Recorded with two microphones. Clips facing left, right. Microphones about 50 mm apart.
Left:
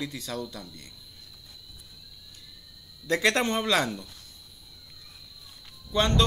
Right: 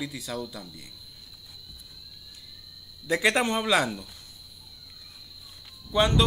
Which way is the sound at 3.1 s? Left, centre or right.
Centre.